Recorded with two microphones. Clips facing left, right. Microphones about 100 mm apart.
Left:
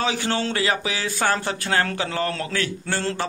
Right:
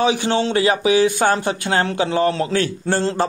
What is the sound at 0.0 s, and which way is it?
Speech, 25° right (ahead or behind).